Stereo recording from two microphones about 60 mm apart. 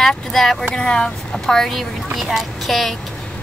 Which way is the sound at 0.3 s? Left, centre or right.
Centre.